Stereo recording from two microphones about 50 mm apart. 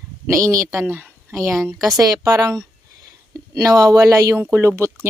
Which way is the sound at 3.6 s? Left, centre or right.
Right.